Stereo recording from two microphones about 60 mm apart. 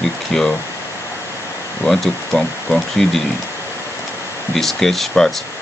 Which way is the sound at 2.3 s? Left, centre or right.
Left.